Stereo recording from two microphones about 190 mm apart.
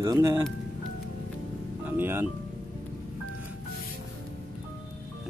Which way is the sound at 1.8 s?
10° right (ahead or behind).